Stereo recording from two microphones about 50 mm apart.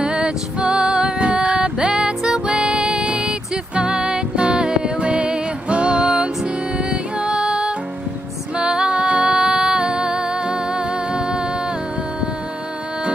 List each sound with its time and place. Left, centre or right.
0.0 s music: centre